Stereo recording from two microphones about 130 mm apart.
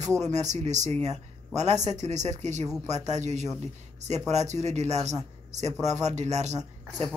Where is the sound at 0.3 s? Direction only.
65° right (ahead or behind).